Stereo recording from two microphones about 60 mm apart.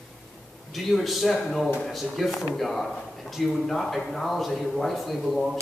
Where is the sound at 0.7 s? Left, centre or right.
Centre.